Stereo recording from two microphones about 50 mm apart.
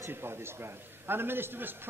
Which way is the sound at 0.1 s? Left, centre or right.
Right.